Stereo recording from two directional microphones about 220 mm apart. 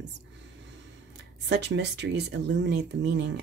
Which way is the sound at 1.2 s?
50° right (ahead or behind).